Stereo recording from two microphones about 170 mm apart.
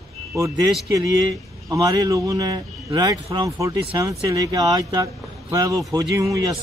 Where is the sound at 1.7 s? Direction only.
20° right (ahead or behind).